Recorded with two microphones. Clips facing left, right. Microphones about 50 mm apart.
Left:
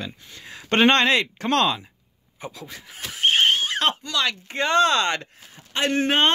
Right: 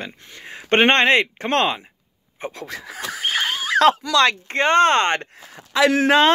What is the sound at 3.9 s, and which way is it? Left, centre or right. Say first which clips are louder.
Speech: right 10 dB; right.